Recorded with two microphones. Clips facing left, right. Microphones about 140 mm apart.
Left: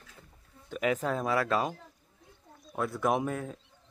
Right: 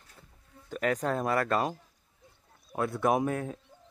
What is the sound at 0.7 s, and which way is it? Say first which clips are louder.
Speech: even; 5° left (ahead or behind).